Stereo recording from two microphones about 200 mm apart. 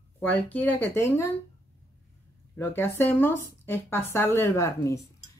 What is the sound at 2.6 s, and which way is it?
Speech, 10° left (ahead or behind).